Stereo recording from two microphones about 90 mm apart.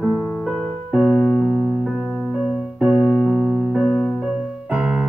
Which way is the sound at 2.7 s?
15° right (ahead or behind).